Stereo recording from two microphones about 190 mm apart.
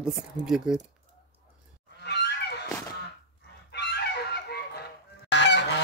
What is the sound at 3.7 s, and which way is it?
Goose, 60° left (ahead or behind).